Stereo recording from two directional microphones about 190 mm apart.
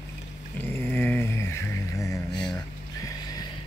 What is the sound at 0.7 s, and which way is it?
Music, 10° left (ahead or behind).